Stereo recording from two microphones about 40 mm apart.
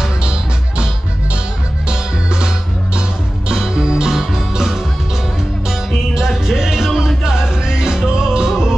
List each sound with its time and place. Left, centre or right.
0.2 s music: right
1.9 s music: right
6.1 s music: centre